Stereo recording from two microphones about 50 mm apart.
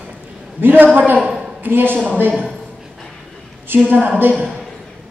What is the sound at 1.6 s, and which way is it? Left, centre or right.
Speech, right.